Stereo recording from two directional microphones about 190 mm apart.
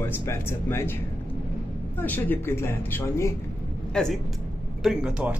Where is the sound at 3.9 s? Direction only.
Centre (ahead or behind).